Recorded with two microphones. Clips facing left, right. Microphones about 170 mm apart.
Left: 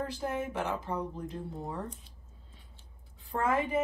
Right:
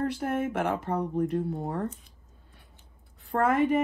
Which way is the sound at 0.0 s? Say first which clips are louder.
Right 6 dB; 70° right (ahead or behind).